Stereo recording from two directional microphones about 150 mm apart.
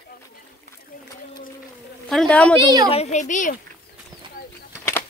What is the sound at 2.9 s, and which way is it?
Speech, 50° left (ahead or behind).